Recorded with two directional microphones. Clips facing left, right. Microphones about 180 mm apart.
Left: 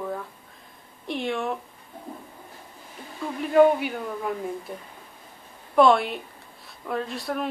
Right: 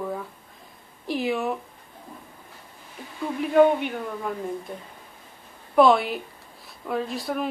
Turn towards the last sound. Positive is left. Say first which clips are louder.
# right 1 dB
turn(degrees=0)  # may be behind; listen again after turning